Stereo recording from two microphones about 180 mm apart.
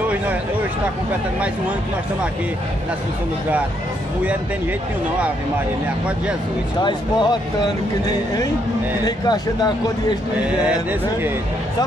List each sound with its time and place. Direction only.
6.8 s speech: 25° left (ahead or behind)
9.0 s speech: 20° left (ahead or behind)
10.4 s speech: 10° right (ahead or behind)